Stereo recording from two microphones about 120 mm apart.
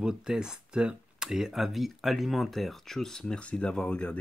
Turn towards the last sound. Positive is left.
turn(degrees=10)  # may be behind; listen again after turning